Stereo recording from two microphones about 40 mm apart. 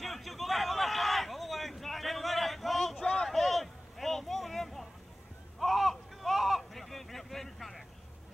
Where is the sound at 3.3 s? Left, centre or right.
Centre.